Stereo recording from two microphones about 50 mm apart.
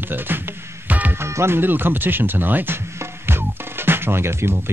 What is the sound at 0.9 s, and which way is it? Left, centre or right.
Music, right.